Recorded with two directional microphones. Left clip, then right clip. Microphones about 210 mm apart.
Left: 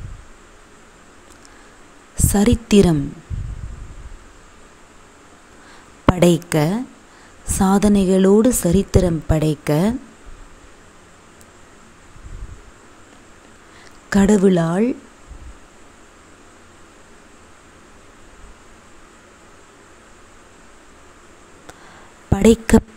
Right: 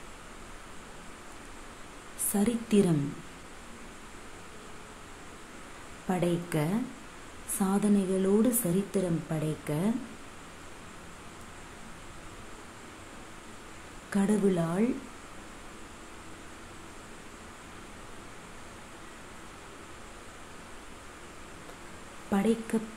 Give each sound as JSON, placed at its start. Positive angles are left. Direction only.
{"t": 2.1, "sound": "a woman's voice", "side_deg": 40}
{"t": 6.1, "sound": "a woman's voice", "side_deg": 45}
{"t": 14.1, "sound": "a woman's voice", "side_deg": 35}
{"t": 22.3, "sound": "a woman's voice", "side_deg": 45}